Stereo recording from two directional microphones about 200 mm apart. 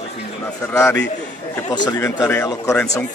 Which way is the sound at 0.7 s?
15° left (ahead or behind).